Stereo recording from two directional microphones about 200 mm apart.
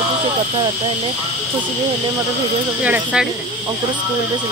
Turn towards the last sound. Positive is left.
turn(degrees=-10)  # may be behind; listen again after turning